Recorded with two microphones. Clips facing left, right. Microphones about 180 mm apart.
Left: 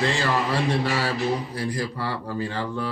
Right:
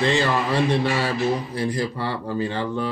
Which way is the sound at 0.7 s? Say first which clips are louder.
Right 2 dB; 20° right (ahead or behind).